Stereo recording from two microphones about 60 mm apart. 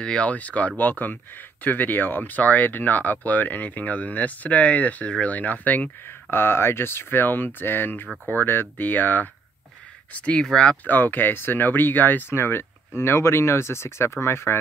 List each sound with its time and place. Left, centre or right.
0.0 s speech: centre; by 14.6 s left